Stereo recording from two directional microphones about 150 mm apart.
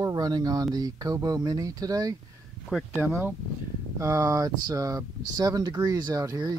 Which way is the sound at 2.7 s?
10° right (ahead or behind).